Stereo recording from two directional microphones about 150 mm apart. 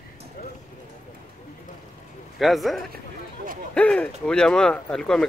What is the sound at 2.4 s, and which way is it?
Speech, centre (ahead or behind).